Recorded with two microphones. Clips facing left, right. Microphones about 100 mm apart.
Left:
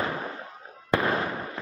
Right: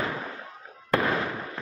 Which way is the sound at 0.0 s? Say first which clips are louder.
Left 1 dB; 20° left (ahead or behind).